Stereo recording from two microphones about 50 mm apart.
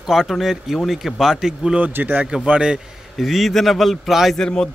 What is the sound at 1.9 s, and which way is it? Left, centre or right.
Speech, right.